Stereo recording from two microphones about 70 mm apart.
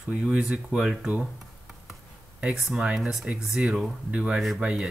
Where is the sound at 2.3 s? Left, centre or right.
Centre.